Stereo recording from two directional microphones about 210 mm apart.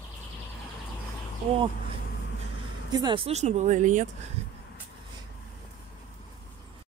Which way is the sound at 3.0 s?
25° right (ahead or behind).